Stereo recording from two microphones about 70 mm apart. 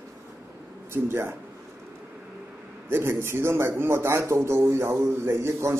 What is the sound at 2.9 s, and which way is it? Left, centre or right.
Speech, right.